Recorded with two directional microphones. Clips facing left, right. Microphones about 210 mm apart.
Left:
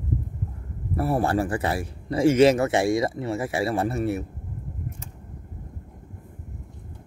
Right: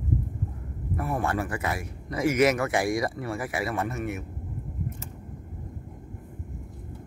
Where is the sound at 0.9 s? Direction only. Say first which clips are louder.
Left 5 dB; 35° left (ahead or behind).